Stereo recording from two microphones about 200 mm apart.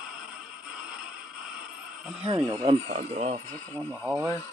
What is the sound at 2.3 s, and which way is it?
Speech, 25° right (ahead or behind).